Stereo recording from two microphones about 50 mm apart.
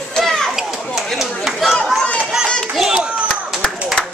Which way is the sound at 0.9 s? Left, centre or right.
Centre.